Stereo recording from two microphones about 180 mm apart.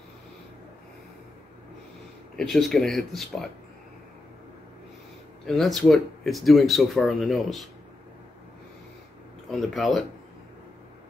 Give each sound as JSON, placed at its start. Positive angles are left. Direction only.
{"t": 2.3, "sound": "speech", "side_deg": 0}
{"t": 5.5, "sound": "speech", "side_deg": 0}
{"t": 9.5, "sound": "speech", "side_deg": 0}